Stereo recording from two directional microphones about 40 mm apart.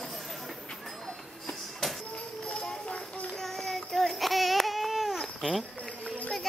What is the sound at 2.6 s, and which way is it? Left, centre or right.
Clip-clop, centre.